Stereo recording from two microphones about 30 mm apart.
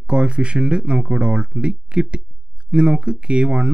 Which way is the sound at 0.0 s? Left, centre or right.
Right.